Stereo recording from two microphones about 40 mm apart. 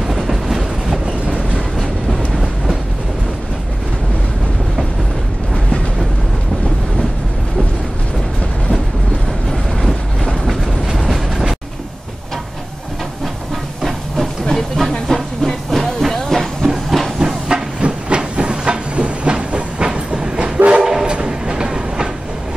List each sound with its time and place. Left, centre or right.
0.0 s train: centre
1.0 s train: centre
1.8 s train: centre
10.9 s train: centre
13.8 s steam: centre
14.5 s train: centre
17.2 s train: centre
17.7 s train: right
20.5 s train: right
20.8 s train: centre